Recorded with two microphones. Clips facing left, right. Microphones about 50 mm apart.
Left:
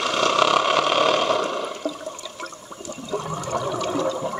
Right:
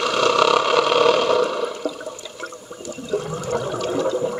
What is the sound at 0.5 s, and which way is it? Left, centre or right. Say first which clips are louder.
Vehicle: right 2 dB; left.